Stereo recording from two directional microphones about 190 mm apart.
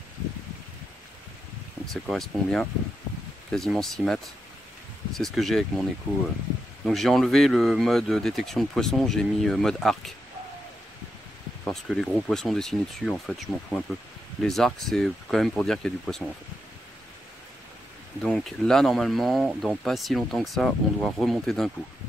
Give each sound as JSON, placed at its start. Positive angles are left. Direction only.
{"t": 1.9, "sound": "speech", "side_deg": 0}
{"t": 6.9, "sound": "speech", "side_deg": 0}
{"t": 11.6, "sound": "speech", "side_deg": 0}
{"t": 18.2, "sound": "speech", "side_deg": 5}